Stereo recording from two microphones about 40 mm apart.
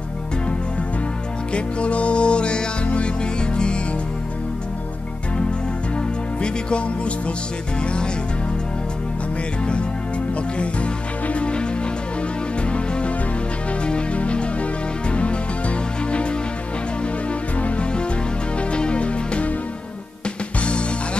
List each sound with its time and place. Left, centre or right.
1.5 s music: left
5.9 s music: left
9.7 s music: left
20.6 s music: left